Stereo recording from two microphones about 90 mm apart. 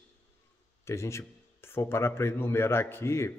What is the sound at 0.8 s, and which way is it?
Speech, 30° left (ahead or behind).